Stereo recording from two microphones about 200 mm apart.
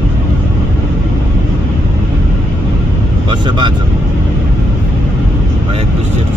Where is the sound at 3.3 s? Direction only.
25° right (ahead or behind).